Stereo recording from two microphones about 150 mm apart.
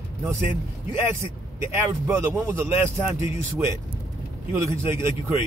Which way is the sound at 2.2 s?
15° right (ahead or behind).